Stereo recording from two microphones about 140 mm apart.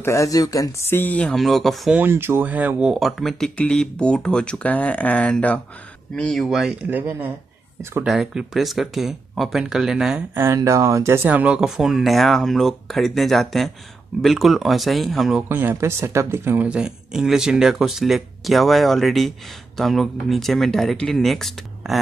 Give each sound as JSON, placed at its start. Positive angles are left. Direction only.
{"t": 0.0, "sound": "speech", "side_deg": 20}
{"t": 2.0, "sound": "speech", "side_deg": -15}
{"t": 6.9, "sound": "speech", "side_deg": -15}
{"t": 8.0, "sound": "speech", "side_deg": -5}
{"t": 10.3, "sound": "speech", "side_deg": -20}
{"t": 15.4, "sound": "speech", "side_deg": -15}